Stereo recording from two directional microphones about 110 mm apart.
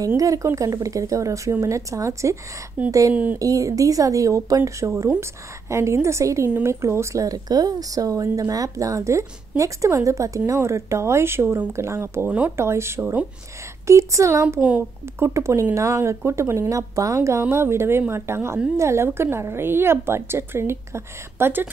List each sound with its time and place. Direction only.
0.2 s a woman's voice: 30° right (ahead or behind)
12.3 s speech: 10° right (ahead or behind)
12.5 s a woman's voice: 25° right (ahead or behind)